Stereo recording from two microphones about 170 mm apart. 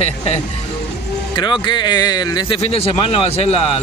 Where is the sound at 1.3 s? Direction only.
25° left (ahead or behind).